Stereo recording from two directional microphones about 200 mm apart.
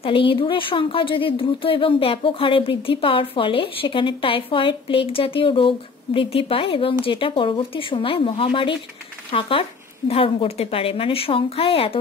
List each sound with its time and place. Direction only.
0.0 s speech: 25° left (ahead or behind)